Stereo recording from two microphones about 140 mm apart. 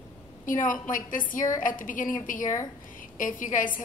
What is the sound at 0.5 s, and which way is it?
A woman's voice, 70° left (ahead or behind).